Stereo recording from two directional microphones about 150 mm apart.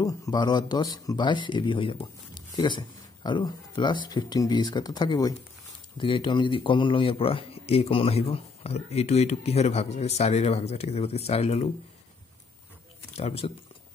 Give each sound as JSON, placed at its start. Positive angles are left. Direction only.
{"t": 0.0, "sound": "speech", "side_deg": 25}
{"t": 13.1, "sound": "speech", "side_deg": 40}